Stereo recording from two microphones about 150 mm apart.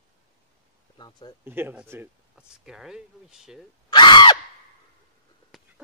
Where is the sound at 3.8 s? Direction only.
30° left (ahead or behind).